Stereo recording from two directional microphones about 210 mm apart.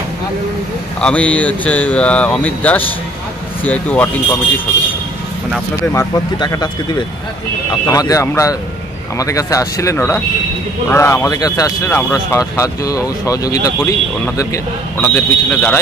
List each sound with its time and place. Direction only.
1.0 s speech: 5° left (ahead or behind)
5.9 s speech: 20° left (ahead or behind)
7.8 s speech: 15° left (ahead or behind)